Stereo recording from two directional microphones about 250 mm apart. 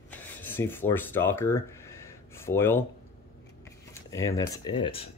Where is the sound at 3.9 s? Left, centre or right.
Centre.